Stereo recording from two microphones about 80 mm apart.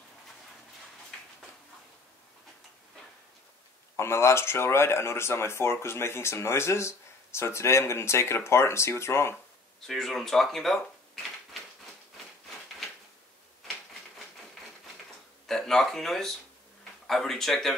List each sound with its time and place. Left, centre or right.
3.9 s speech: left
9.8 s speech: centre
15.4 s speech: centre